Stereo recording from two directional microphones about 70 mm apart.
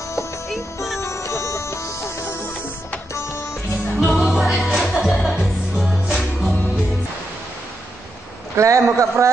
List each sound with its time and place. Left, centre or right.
1.0 s music: left
4.0 s music: centre
8.5 s a man's voice: right